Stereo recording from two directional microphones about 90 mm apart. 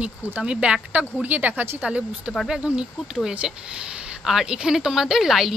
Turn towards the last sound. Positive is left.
turn(degrees=0)  # may be behind; listen again after turning